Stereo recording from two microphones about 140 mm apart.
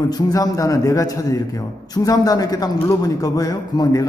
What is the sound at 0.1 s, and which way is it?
A man's voice, 25° left (ahead or behind).